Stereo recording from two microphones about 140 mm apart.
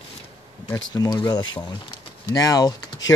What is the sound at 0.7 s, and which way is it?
Speech, 30° left (ahead or behind).